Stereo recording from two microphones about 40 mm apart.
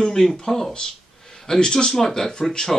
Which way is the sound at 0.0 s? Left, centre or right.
Centre.